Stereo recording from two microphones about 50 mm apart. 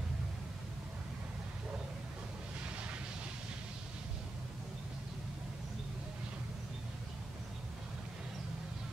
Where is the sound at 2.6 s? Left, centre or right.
Right.